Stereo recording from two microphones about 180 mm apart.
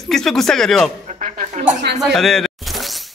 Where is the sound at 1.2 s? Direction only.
45° right (ahead or behind).